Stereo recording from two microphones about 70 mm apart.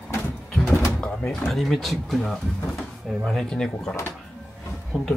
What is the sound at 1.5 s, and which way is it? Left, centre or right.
Speech, centre.